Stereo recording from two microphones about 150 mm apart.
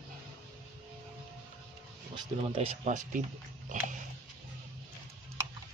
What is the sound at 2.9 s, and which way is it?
Speech, 55° right (ahead or behind).